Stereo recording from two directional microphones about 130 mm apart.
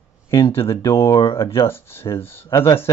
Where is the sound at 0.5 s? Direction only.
20° left (ahead or behind).